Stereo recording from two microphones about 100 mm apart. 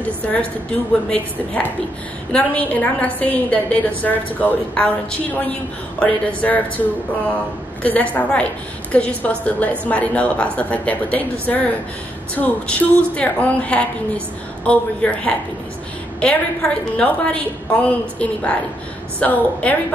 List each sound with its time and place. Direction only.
0.0 s a woman's voice: 15° left (ahead or behind)
7.8 s a woman's voice: 15° left (ahead or behind)